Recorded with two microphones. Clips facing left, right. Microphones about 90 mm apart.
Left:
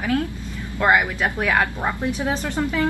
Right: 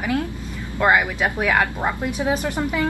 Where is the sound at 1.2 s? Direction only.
15° right (ahead or behind).